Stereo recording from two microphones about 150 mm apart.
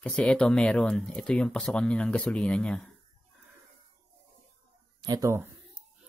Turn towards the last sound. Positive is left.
turn(degrees=-20)  # may be behind; listen again after turning